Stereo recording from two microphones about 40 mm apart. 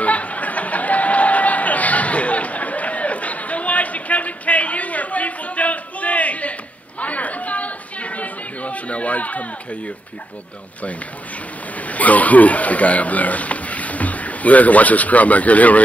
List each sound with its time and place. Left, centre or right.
0.0 s a sound: left
7.0 s chatter: left
11.8 s speech: left